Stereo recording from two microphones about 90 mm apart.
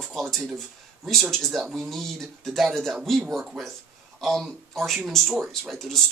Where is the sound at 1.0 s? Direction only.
5° left (ahead or behind).